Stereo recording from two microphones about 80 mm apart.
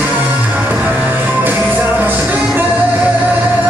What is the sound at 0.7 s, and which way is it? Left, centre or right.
Music, right.